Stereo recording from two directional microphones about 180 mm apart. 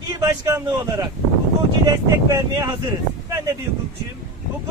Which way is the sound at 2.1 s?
20° right (ahead or behind).